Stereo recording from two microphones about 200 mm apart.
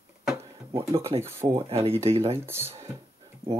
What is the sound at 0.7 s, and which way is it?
Speech, 30° right (ahead or behind).